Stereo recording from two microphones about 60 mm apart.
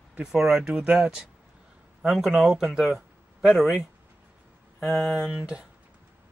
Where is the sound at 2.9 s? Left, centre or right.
Centre.